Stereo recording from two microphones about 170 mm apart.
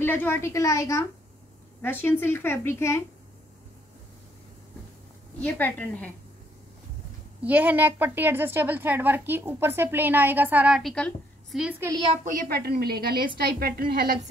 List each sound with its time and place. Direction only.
0.0 s a woman's voice: 15° left (ahead or behind)
5.4 s a woman's voice: 10° left (ahead or behind)
7.4 s a woman's voice: 10° right (ahead or behind)
12.3 s a woman's voice: 60° right (ahead or behind)